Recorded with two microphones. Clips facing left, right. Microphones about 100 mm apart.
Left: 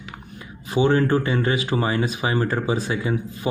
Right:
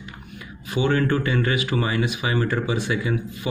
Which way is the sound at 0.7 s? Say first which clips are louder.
Left 3 dB; 30° left (ahead or behind).